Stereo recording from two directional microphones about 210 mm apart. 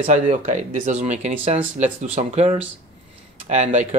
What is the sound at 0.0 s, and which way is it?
A man's voice, 35° right (ahead or behind).